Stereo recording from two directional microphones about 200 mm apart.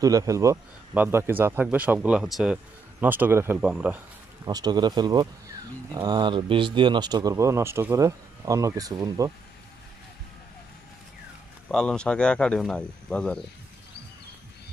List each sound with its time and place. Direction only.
0.0 s a man's voice: 15° right (ahead or behind)
4.5 s speech: 20° right (ahead or behind)
11.7 s speech: 5° left (ahead or behind)